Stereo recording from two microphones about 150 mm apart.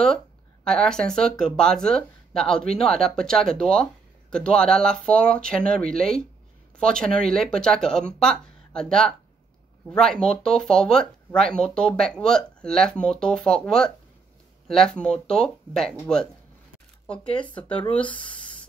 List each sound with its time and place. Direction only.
0.7 s speech: 5° left (ahead or behind)
17.0 s speech: 10° left (ahead or behind)
18.0 s speech: 35° left (ahead or behind)